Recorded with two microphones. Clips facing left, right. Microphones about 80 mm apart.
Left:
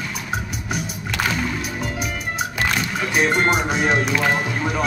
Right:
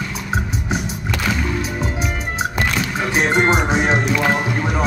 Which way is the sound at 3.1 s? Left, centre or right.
Right.